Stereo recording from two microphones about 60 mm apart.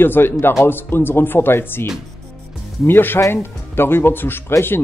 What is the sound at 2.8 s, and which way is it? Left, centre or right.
Speech, left.